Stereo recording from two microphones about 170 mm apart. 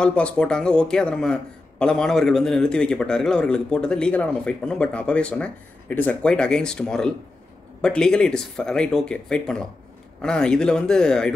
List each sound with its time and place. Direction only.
0.0 s a man's voice: 5° left (ahead or behind)